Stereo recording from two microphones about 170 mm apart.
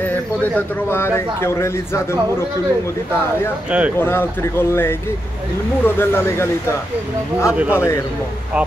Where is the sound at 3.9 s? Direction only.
10° left (ahead or behind).